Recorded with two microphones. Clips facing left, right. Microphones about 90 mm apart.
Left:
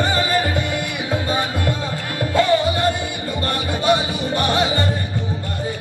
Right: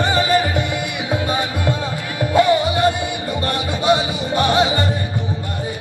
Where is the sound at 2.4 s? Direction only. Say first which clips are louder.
Right 2 dB; 20° right (ahead or behind).